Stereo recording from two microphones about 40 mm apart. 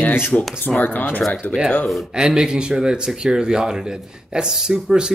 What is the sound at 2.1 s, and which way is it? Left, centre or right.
Speech, centre.